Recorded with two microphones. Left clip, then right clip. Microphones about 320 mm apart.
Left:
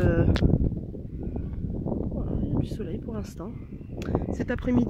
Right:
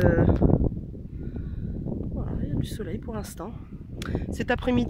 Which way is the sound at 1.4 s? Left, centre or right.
Left.